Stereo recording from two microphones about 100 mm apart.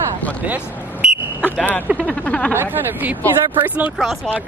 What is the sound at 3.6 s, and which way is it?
Speech, 15° right (ahead or behind).